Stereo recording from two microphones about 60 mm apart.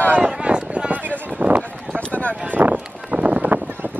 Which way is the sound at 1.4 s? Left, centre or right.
Right.